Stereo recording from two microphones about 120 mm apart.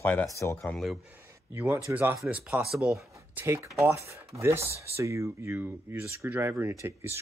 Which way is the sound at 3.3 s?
20° right (ahead or behind).